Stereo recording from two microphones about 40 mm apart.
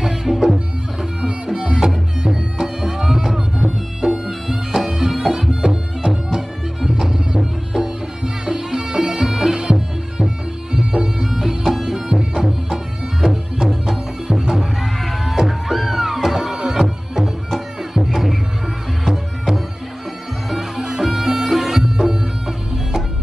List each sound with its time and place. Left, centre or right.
0.0 s music: centre
21.9 s music: centre